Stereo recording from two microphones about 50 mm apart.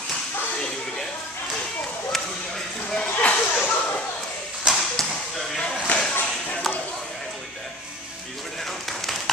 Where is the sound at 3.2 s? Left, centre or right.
Left.